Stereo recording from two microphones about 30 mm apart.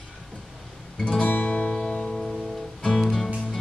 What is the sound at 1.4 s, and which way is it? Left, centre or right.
Music, left.